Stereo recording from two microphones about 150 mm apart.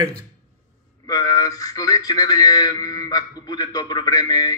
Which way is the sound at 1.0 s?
25° left (ahead or behind).